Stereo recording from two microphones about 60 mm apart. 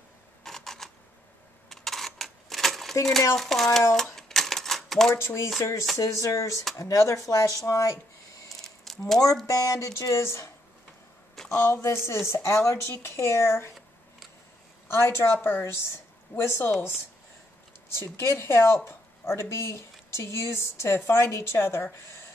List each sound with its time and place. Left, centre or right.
0.4 s camera: centre
1.7 s coin: centre
3.3 s speech: centre
3.9 s typewriter: centre
5.1 s speech: left
8.5 s a sound: centre
9.5 s speech: left
10.1 s speech: left
11.5 s speech: left
14.9 s speech: left
15.6 s speech: left
17.9 s speech: left
18.9 s a sound: left
19.5 s speech: left